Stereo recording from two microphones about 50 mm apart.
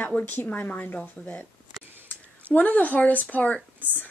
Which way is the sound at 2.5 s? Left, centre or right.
Left.